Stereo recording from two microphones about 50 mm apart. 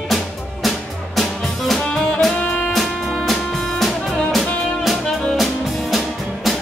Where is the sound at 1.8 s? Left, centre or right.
Centre.